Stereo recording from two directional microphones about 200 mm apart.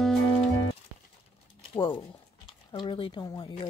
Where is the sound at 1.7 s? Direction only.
25° left (ahead or behind).